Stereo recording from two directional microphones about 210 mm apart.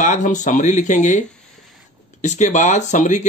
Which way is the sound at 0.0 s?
35° left (ahead or behind).